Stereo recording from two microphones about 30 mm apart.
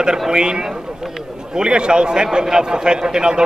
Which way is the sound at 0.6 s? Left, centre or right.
Centre.